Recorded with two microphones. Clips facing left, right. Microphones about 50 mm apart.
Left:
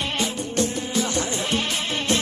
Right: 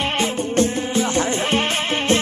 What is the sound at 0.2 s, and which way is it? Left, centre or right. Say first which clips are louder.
Music: right 6 dB; right.